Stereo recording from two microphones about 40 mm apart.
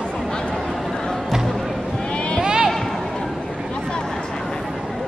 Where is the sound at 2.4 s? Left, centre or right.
Right.